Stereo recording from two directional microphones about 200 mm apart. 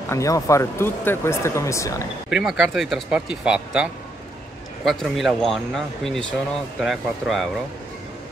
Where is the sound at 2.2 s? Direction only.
5° right (ahead or behind).